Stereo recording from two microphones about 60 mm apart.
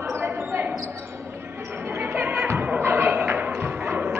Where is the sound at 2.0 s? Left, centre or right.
Right.